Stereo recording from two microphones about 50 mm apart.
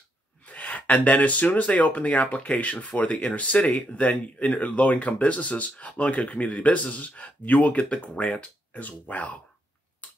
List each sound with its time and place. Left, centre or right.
0.5 s speech: left